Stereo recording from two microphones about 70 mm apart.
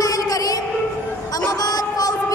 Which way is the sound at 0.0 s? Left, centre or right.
Left.